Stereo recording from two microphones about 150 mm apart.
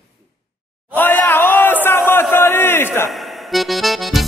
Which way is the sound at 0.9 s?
10° left (ahead or behind).